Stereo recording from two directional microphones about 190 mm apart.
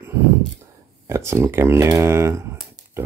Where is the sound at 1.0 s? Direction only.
15° right (ahead or behind).